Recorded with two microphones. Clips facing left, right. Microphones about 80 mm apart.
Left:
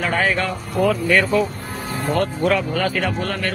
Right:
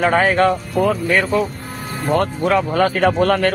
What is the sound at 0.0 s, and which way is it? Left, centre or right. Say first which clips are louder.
Speech: right 6 dB; right.